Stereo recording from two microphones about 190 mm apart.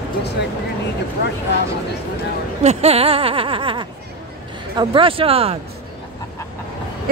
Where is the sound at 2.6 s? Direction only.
35° right (ahead or behind).